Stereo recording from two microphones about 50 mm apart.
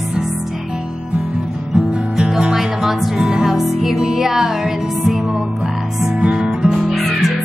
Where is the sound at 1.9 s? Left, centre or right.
Centre.